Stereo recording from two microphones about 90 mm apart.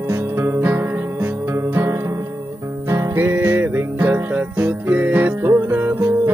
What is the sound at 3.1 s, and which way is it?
Music, 20° right (ahead or behind).